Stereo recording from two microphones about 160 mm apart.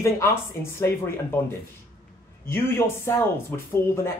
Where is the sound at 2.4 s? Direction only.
15° left (ahead or behind).